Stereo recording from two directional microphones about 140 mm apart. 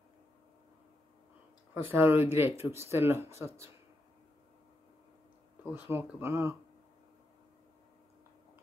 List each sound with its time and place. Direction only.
1.7 s speech: 15° right (ahead or behind)
5.6 s speech: 15° right (ahead or behind)